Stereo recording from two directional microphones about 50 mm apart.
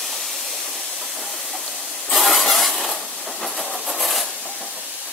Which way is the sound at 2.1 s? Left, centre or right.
Centre.